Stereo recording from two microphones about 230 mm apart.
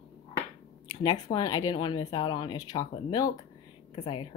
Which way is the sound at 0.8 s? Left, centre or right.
Centre.